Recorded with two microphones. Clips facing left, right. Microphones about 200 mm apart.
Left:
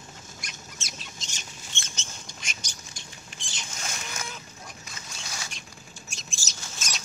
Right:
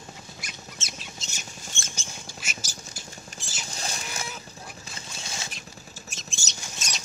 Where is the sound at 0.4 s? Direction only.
5° right (ahead or behind).